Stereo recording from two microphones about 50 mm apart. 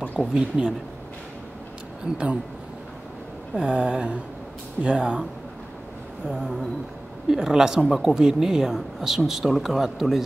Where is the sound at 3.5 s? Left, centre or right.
Centre.